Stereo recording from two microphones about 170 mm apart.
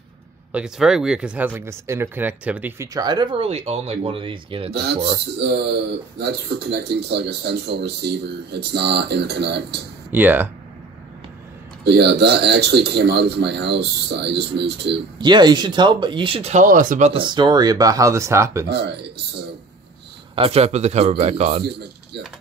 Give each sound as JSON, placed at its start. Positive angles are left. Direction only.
{"t": 0.5, "sound": "speech", "side_deg": -5}
{"t": 5.4, "sound": "speech", "side_deg": -80}
{"t": 10.1, "sound": "speech", "side_deg": -10}
{"t": 11.8, "sound": "speech", "side_deg": -75}
{"t": 15.1, "sound": "speech", "side_deg": -25}
{"t": 16.6, "sound": "speech", "side_deg": -50}
{"t": 17.1, "sound": "speech", "side_deg": -30}
{"t": 18.7, "sound": "speech", "side_deg": -80}
{"t": 20.3, "sound": "speech", "side_deg": -35}